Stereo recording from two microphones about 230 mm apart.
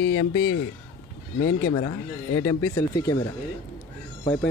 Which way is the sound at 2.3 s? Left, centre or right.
Left.